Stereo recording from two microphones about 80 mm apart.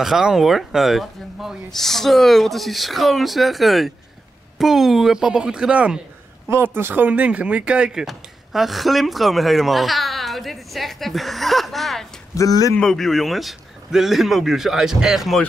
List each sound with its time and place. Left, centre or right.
0.0 s a woman's voice: centre
6.5 s speech: right; by 12.1 s centre
12.4 s speech: left
12.8 s speech: centre